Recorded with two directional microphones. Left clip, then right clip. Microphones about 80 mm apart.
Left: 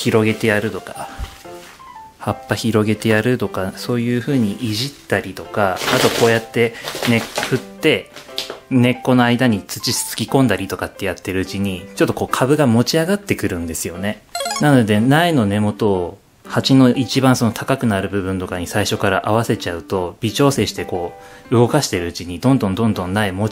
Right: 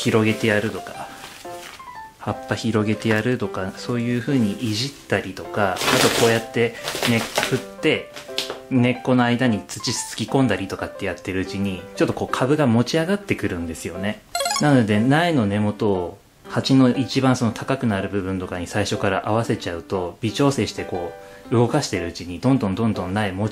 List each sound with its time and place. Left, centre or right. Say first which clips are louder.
0.0 s speech: left 3 dB; left
2.2 s speech: left 4 dB; left
7.8 s speech: left 5 dB; left
14.3 s music: right 1 dB; centre
14.6 s speech: left 5 dB; left